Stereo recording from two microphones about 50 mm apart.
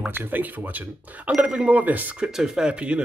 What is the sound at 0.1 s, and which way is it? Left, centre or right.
Speech, right.